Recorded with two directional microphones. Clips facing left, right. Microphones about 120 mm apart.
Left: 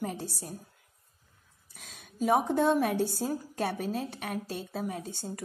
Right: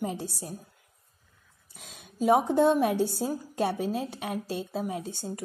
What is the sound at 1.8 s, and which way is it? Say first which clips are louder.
A woman's voice: right 2 dB; 20° right (ahead or behind).